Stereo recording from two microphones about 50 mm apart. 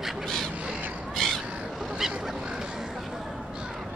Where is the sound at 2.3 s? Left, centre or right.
Centre.